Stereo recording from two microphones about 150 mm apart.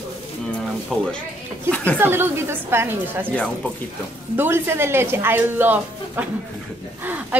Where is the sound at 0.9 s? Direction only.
5° right (ahead or behind).